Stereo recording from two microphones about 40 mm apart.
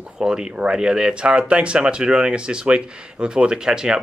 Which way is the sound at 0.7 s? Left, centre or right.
Centre.